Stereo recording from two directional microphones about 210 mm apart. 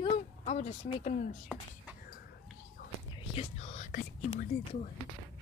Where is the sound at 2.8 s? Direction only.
45° left (ahead or behind).